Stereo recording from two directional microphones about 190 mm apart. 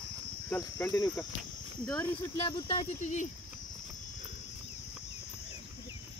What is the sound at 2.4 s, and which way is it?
Speech, 30° left (ahead or behind).